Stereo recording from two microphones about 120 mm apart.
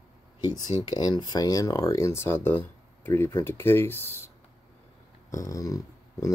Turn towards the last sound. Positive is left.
turn(degrees=30)  # may be behind; listen again after turning